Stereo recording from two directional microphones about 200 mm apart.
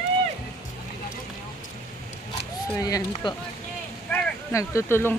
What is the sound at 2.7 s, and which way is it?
Speech, 20° left (ahead or behind).